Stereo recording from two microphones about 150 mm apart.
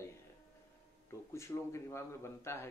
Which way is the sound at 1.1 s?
20° left (ahead or behind).